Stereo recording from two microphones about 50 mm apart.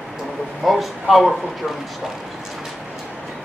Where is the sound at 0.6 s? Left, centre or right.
Centre.